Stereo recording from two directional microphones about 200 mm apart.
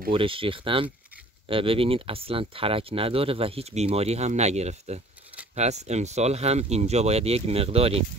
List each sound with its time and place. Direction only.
0.1 s speech: 25° right (ahead or behind)